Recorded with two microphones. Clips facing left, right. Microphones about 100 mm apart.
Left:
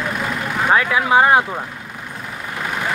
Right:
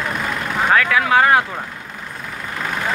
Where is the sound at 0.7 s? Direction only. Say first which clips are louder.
Left 1 dB; 20° left (ahead or behind).